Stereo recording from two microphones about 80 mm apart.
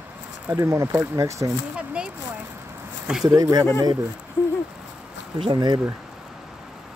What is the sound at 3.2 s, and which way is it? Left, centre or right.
Speech, right.